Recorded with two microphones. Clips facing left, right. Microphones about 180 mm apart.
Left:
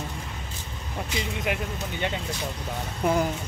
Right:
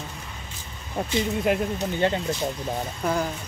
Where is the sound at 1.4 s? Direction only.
40° right (ahead or behind).